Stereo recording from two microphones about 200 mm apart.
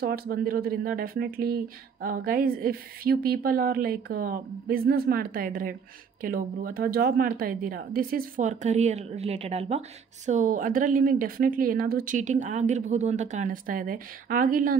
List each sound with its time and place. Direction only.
0.0 s speech: 50° right (ahead or behind)